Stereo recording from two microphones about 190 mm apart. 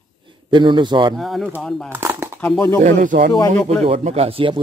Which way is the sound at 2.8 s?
45° right (ahead or behind).